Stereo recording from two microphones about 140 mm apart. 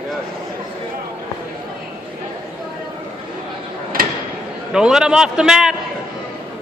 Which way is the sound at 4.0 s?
90° right.